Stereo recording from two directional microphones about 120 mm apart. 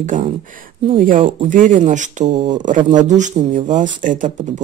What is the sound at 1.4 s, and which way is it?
Speech, 90° right.